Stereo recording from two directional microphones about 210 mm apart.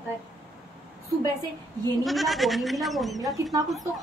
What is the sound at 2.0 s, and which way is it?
Speech, centre (ahead or behind).